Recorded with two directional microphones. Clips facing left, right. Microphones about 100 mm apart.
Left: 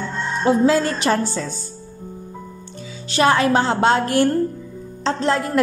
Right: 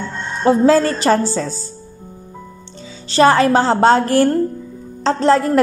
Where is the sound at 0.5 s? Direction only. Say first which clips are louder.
Right 4 dB; 40° right (ahead or behind).